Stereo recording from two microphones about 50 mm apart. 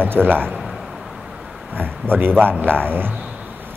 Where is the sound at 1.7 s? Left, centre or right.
Right.